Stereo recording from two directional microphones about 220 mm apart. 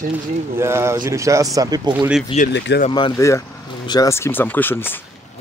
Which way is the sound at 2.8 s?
20° left (ahead or behind).